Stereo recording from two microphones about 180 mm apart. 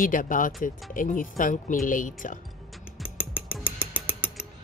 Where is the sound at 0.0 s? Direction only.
50° left (ahead or behind).